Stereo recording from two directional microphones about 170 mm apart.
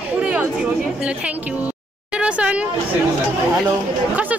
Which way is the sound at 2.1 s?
5° right (ahead or behind).